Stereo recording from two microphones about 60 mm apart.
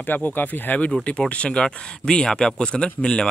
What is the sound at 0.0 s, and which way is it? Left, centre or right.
Speech, left.